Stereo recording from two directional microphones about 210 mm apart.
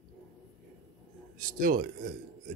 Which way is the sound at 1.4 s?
40° right (ahead or behind).